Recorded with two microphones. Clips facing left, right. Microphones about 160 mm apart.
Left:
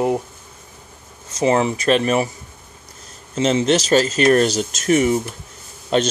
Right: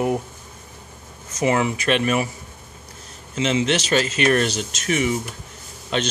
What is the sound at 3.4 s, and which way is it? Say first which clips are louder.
Speech: left 4 dB; 40° left (ahead or behind).